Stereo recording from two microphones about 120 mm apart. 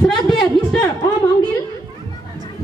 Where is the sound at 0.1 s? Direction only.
40° left (ahead or behind).